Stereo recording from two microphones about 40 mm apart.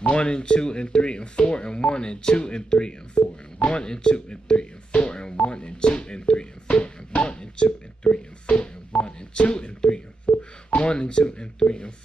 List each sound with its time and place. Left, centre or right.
0.1 s speech: left
3.5 s music: left
10.3 s telephone dialing: left
10.8 s speech: left